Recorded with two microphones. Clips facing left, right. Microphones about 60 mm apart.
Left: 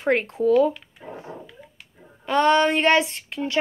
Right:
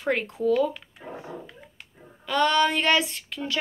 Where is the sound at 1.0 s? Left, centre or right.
Centre.